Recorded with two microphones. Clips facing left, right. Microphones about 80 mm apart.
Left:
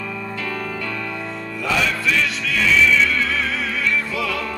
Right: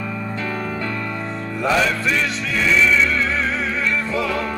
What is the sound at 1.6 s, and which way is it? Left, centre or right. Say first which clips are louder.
Music: right 3 dB; right.